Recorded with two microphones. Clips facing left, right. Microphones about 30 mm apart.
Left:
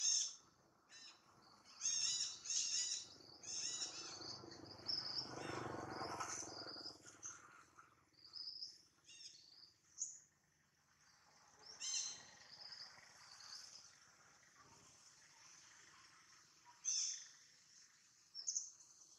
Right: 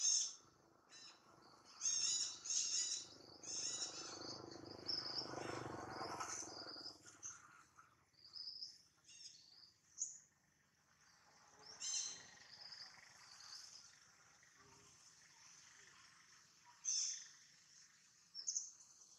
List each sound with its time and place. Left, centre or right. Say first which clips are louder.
0.0 s owl: even; centre
1.4 s a sound: right 1 dB; centre
1.8 s bird: even; centre
3.3 s wild animals: even; centre
6.4 s cricket: left 1 dB; centre
7.4 s purr: left 1 dB; left
8.3 s cricket: left 1 dB; centre
10.0 s a sound: right 1 dB; centre
11.6 s bird: left 1 dB; centre
12.9 s frog: even; centre
15.4 s frog: even; centre
16.8 s owl: even; centre
18.4 s bird: even; centre